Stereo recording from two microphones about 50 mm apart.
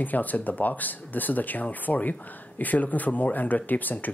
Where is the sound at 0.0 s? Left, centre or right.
Left.